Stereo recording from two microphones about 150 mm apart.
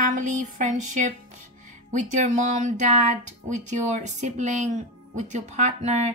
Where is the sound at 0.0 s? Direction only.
55° right (ahead or behind).